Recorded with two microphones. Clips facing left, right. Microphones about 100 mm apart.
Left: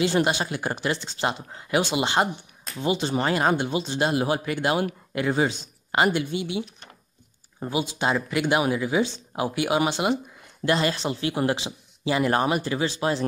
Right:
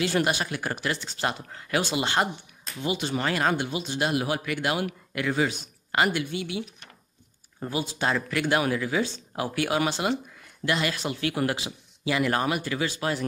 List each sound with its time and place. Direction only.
0.0 s a man's voice: 25° left (ahead or behind)
7.6 s a man's voice: 20° left (ahead or behind)
10.6 s a man's voice: 30° left (ahead or behind)